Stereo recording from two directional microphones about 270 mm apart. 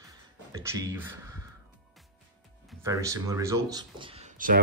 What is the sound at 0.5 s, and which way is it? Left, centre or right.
Speech, centre.